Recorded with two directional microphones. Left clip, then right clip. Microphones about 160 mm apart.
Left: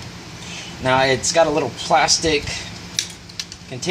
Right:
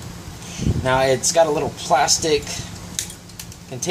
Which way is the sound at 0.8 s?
15° left (ahead or behind).